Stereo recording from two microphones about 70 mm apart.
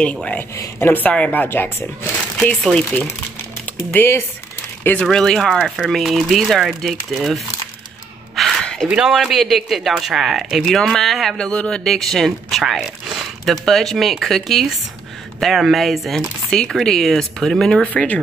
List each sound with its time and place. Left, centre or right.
0.0 s a woman's voice: centre
2.7 s a woman's voice: centre
3.9 s speech: left
5.0 s speech: centre
8.4 s a sound: centre
9.0 s speech: centre
17.8 s a woman's voice: left